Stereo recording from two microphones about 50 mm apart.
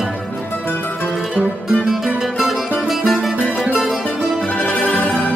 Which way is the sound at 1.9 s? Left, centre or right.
Centre.